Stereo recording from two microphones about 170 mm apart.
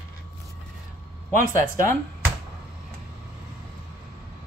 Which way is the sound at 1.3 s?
50° right (ahead or behind).